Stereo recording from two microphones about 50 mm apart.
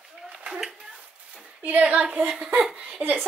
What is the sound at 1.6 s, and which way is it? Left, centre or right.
A woman's voice, right.